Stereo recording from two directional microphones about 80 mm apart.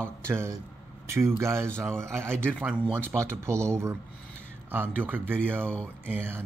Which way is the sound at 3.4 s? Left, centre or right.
Right.